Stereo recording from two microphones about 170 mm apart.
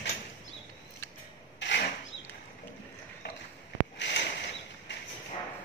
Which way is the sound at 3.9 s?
90° left.